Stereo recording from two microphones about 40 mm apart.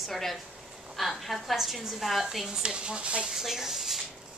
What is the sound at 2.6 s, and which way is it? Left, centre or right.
Speech, right.